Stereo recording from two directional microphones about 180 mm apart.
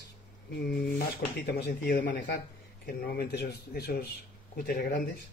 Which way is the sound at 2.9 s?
60° left (ahead or behind).